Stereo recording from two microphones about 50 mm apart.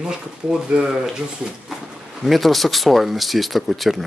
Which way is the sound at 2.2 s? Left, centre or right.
Centre.